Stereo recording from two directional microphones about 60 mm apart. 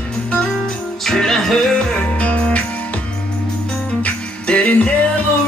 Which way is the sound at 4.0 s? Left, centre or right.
Centre.